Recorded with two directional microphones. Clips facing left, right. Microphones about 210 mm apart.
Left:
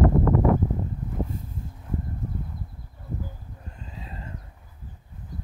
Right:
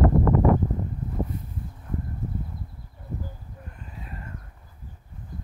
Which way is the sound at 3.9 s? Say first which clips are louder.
Left 1 dB; 25° left (ahead or behind).